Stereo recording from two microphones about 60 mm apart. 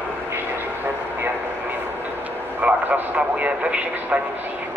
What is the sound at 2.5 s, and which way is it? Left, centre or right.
Speech, right.